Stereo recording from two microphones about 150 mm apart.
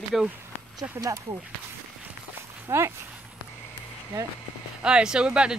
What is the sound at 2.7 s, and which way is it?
Speech, 20° right (ahead or behind).